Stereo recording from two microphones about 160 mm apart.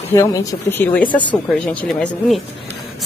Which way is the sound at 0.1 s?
20° left (ahead or behind).